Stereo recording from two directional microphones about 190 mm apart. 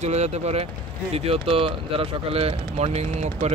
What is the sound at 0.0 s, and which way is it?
Speech, 35° right (ahead or behind).